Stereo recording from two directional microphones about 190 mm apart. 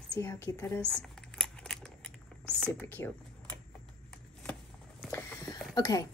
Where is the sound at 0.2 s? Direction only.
15° left (ahead or behind).